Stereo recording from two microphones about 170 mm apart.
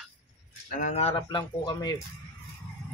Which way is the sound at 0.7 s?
45° left (ahead or behind).